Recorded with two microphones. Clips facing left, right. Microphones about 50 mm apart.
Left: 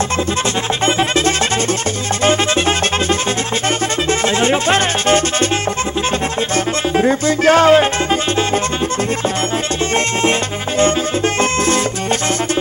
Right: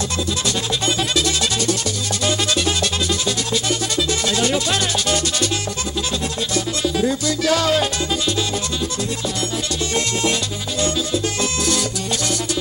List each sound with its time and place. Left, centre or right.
0.8 s music: left
4.1 s music: left
6.5 s music: left